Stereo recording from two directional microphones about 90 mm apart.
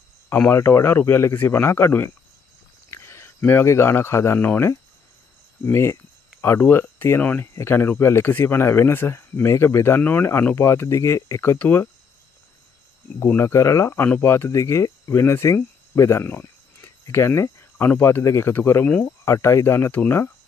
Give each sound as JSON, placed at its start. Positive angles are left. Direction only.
{"t": 0.5, "sound": "speech", "side_deg": 30}
{"t": 11.5, "sound": "speech", "side_deg": 20}
{"t": 13.4, "sound": "speech", "side_deg": 35}
{"t": 14.0, "sound": "speech", "side_deg": 20}